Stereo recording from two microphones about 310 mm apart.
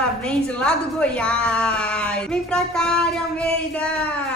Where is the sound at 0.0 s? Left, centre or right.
Centre.